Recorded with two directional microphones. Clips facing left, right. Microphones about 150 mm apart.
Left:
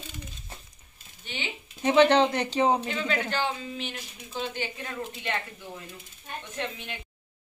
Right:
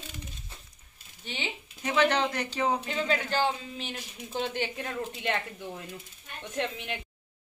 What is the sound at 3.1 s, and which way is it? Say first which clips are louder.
Speech: right 2 dB; 35° right (ahead or behind).